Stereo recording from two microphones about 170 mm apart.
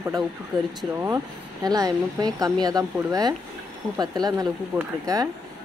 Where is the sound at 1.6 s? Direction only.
20° right (ahead or behind).